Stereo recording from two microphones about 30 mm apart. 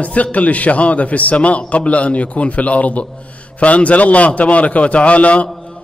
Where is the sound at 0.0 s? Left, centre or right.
Left.